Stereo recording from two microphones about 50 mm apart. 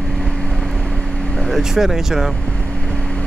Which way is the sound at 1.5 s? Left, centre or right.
Centre.